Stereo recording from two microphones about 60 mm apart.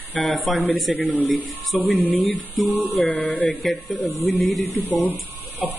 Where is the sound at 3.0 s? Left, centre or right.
Left.